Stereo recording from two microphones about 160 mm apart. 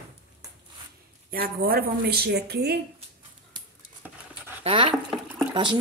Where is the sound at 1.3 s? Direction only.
70° right (ahead or behind); by 2.8 s 85° right.